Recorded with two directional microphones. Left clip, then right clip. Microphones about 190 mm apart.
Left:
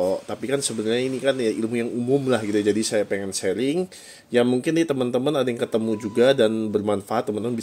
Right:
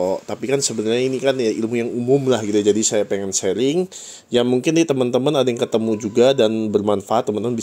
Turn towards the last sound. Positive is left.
turn(degrees=-25)  # may be behind; listen again after turning